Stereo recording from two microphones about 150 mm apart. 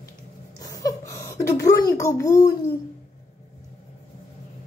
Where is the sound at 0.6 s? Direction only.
25° left (ahead or behind).